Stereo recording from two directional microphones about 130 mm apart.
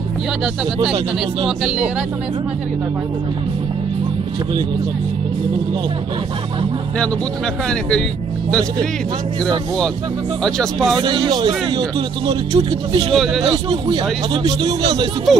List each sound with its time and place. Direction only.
11.0 s speech: 35° right (ahead or behind)
13.1 s a man's voice: centre (ahead or behind)
13.7 s speech: 35° right (ahead or behind)
15.3 s a man's voice: centre (ahead or behind)